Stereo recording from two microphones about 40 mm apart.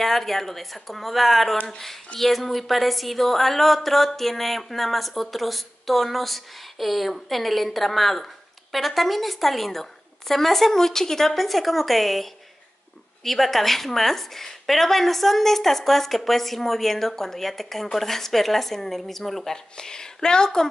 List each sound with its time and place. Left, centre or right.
0.0 s speech: centre
19.5 s a woman's voice: centre